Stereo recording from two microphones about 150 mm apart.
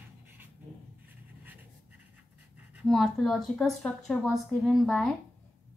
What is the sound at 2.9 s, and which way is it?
A woman's voice, centre (ahead or behind).